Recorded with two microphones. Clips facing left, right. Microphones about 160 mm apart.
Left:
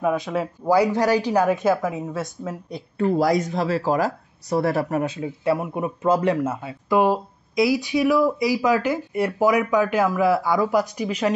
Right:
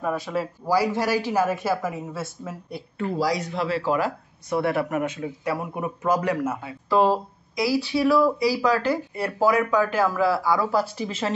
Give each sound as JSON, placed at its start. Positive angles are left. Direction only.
{"t": 0.0, "sound": "speech", "side_deg": 20}
{"t": 3.0, "sound": "speech", "side_deg": 50}
{"t": 6.9, "sound": "speech", "side_deg": 15}